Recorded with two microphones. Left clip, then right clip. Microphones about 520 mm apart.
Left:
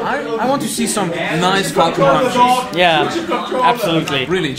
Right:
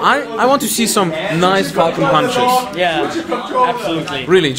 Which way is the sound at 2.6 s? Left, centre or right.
Left.